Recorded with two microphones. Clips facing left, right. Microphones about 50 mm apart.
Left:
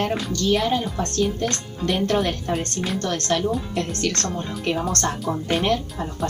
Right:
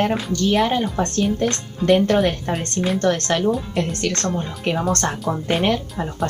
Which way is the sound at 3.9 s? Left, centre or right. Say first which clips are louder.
Right 2 dB; centre.